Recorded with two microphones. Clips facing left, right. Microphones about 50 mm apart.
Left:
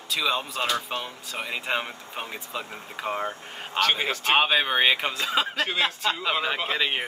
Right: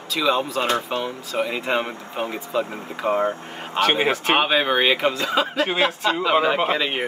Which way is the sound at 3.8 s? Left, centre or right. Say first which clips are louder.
Right 5 dB; right.